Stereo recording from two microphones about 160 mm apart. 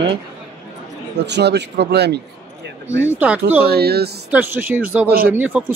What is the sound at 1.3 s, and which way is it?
Speech, 90° right.